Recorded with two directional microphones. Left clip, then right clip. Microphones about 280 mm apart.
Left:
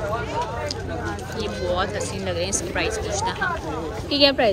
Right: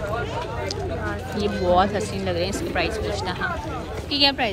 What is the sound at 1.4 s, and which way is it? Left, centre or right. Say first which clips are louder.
Speech: right 5 dB; centre.